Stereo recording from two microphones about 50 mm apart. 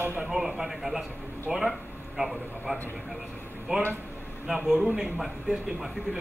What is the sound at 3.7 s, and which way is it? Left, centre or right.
Speech, right.